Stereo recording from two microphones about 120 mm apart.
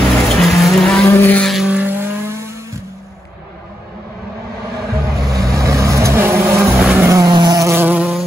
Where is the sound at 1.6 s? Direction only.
15° right (ahead or behind).